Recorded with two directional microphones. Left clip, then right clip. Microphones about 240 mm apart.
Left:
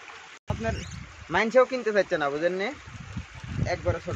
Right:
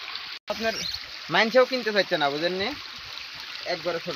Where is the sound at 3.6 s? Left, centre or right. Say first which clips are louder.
Even; right.